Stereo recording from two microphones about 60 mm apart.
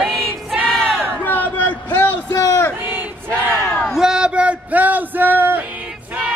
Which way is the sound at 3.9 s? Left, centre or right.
Centre.